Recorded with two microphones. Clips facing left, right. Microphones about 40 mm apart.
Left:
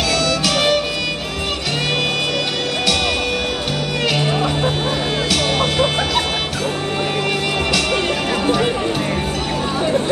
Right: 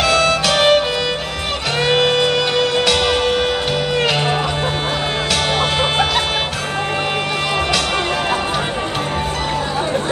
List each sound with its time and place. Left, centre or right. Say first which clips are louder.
0.1 s music: right 3 dB; right